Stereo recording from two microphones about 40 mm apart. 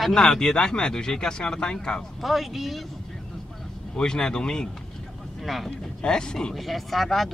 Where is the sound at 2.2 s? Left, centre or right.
Centre.